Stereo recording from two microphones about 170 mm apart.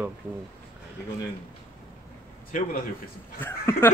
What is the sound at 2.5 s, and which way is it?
Speech, 50° left (ahead or behind).